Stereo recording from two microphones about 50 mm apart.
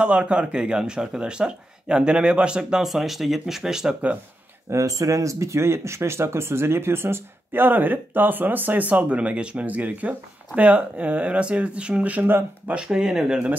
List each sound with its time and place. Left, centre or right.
0.0 s speech: right
2.8 s speech: centre
4.6 s speech: right
12.8 s speech: centre